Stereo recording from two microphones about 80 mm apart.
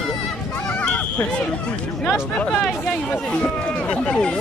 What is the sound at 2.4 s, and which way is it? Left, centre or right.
Speech, centre.